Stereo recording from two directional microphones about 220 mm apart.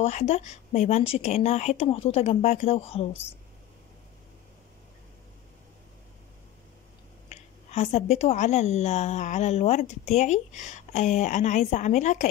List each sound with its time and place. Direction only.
0.0 s speech: 30° left (ahead or behind)
7.2 s a woman's voice: 30° left (ahead or behind)